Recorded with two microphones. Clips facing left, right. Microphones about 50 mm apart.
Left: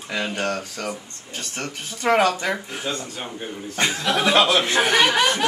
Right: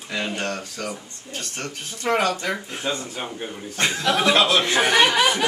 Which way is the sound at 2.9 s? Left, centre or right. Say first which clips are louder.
Right 1 dB; centre.